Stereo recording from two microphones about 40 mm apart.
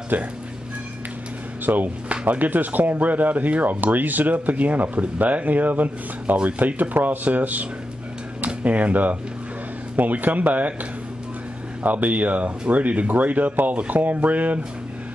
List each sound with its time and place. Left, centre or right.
0.1 s speech: right
1.7 s speech: right
2.2 s speech: right
8.6 s speech: right
11.8 s speech: right